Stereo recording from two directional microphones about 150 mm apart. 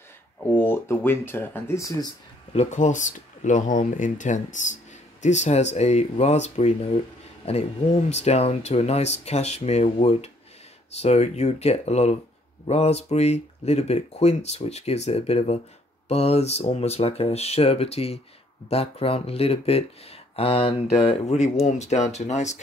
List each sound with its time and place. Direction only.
0.5 s speech: 15° left (ahead or behind)
2.5 s speech: 50° left (ahead or behind)